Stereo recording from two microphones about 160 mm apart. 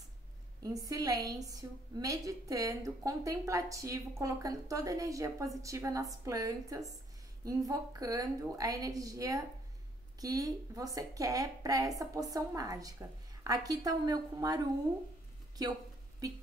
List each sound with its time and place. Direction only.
0.6 s a woman's voice: 20° right (ahead or behind)
15.6 s a woman's voice: 25° right (ahead or behind)